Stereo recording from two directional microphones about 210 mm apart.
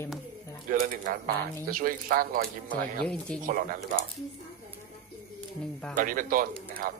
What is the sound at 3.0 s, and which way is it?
Speech, 5° left (ahead or behind).